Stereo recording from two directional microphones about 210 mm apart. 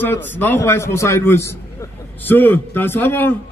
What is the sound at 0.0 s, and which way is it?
A man's voice, 10° left (ahead or behind).